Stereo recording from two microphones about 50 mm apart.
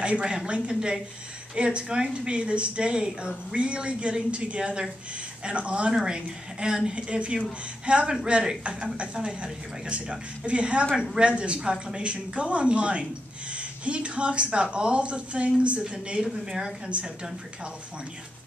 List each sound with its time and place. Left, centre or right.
0.0 s a woman's voice: centre